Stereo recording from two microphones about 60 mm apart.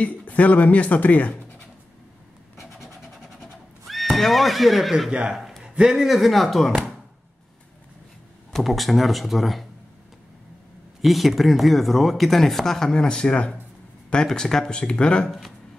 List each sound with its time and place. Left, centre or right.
0.0 s speech: left
2.6 s vehicle: centre
3.8 s speech: centre
5.3 s a sound: centre
5.6 s speech: centre
8.5 s speech: centre
11.0 s speech: centre